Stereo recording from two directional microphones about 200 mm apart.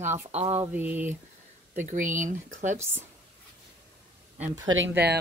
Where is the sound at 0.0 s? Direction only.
35° right (ahead or behind).